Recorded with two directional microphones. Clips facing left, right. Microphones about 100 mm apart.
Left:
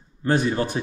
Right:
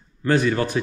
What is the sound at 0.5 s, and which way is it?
Mantra, 25° left (ahead or behind).